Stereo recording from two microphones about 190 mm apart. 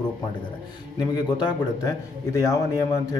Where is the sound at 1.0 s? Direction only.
25° left (ahead or behind).